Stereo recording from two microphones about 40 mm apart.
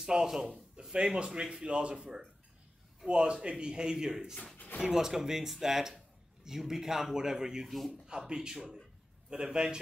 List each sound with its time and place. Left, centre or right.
0.0 s speech: centre